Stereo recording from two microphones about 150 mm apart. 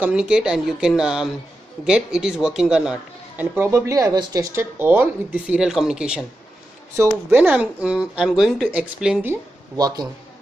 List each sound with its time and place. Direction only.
0.0 s a man's voice: 5° right (ahead or behind)
9.8 s a man's voice: 25° right (ahead or behind)